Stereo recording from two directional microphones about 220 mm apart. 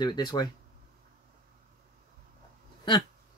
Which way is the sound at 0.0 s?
20° left (ahead or behind).